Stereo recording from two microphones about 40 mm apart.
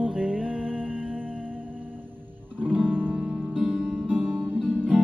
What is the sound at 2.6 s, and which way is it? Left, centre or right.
Music, right.